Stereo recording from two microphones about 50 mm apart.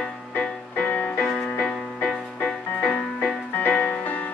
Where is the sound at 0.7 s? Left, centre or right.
Left.